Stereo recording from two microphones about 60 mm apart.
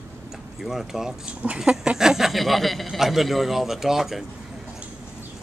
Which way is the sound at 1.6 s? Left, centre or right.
Centre.